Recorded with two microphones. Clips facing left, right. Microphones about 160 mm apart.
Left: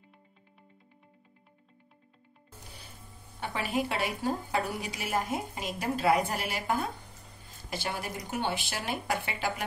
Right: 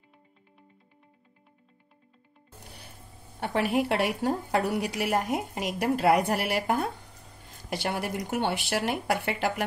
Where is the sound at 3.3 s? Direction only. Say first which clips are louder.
Right 5 dB; 60° right (ahead or behind).